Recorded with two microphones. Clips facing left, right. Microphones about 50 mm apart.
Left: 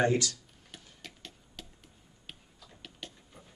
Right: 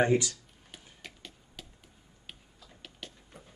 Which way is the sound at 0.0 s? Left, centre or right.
Centre.